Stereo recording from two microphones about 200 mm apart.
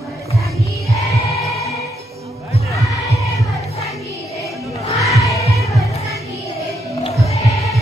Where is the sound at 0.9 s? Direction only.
15° left (ahead or behind).